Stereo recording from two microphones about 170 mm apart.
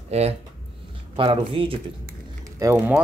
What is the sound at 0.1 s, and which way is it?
Speech, 40° right (ahead or behind).